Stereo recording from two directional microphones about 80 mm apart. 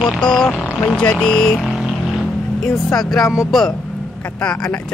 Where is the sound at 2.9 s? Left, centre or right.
Centre.